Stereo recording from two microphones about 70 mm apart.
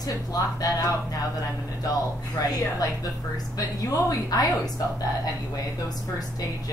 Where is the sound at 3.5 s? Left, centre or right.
Left.